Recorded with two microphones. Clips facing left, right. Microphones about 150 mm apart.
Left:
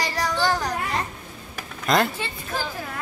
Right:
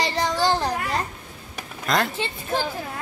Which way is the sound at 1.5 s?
5° left (ahead or behind).